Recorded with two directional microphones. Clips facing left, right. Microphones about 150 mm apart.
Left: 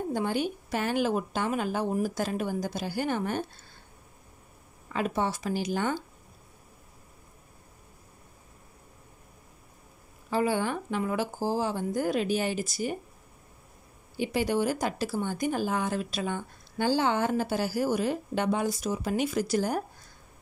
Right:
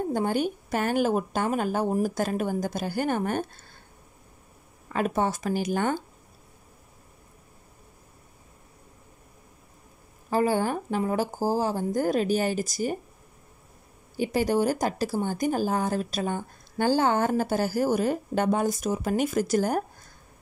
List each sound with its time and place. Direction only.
0.1 s speech: 45° right (ahead or behind)
4.9 s speech: 50° right (ahead or behind)
10.3 s speech: 40° right (ahead or behind)
14.1 s speech: 45° right (ahead or behind)